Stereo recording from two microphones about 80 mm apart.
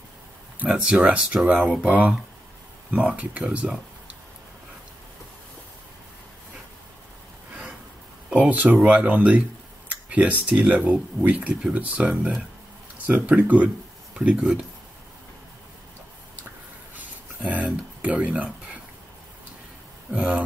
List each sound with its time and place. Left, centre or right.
0.6 s speech: centre
8.3 s speech: centre
16.9 s a sound: right
20.1 s speech: centre